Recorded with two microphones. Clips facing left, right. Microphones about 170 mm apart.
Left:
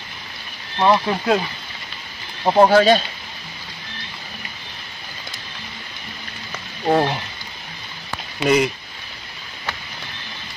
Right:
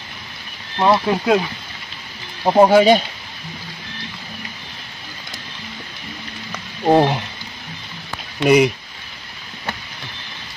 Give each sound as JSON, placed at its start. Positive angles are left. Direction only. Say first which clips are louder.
{"t": 0.7, "sound": "speech", "louder": "right 1 dB", "side_deg": -10}
{"t": 2.4, "sound": "speech", "louder": "right 2 dB", "side_deg": -5}
{"t": 6.8, "sound": "a sound", "louder": "right 4 dB", "side_deg": -20}
{"t": 8.5, "sound": "speech", "louder": "right 4 dB", "side_deg": -15}